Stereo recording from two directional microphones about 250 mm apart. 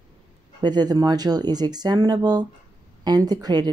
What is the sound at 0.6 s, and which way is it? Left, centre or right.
Speech, centre.